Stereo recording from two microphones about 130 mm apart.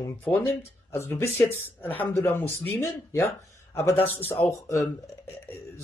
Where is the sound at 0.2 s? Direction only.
15° left (ahead or behind).